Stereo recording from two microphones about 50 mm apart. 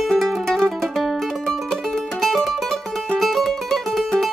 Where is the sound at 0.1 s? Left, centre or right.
Centre.